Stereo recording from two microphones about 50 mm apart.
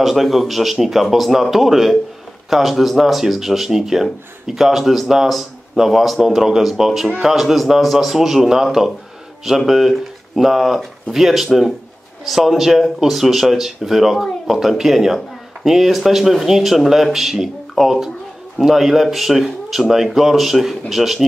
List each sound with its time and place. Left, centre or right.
0.0 s speech: centre
9.7 s speech: centre